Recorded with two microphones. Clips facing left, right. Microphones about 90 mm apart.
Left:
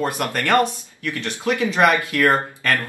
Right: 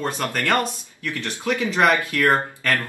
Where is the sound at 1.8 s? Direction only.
15° left (ahead or behind).